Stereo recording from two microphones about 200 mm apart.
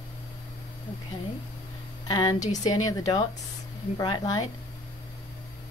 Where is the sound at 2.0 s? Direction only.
20° left (ahead or behind).